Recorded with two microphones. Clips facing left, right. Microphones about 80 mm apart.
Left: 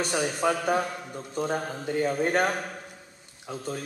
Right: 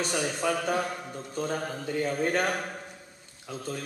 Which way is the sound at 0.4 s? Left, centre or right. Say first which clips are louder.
Left 3 dB; left.